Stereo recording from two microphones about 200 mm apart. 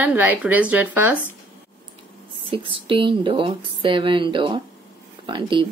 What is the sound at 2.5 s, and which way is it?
Speech, 25° right (ahead or behind).